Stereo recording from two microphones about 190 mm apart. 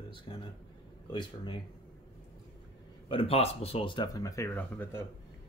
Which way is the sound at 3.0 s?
30° left (ahead or behind).